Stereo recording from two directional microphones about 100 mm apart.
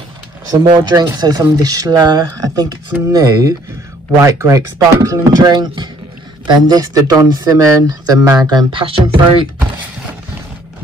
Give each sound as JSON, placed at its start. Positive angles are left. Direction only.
{"t": 0.7, "sound": "speech", "side_deg": -45}
{"t": 5.5, "sound": "speech", "side_deg": -45}
{"t": 8.7, "sound": "speech", "side_deg": -65}